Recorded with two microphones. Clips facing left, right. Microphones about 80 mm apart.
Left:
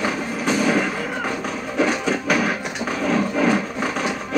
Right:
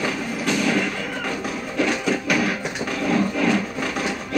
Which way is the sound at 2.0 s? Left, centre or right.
Centre.